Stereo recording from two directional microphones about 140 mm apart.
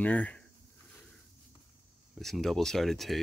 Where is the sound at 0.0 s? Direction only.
10° left (ahead or behind).